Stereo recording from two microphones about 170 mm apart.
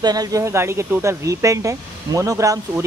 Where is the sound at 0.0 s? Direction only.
20° right (ahead or behind).